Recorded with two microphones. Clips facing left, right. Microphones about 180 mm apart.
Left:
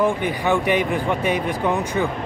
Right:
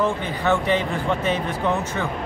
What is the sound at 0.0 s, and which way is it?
Speech, 15° left (ahead or behind).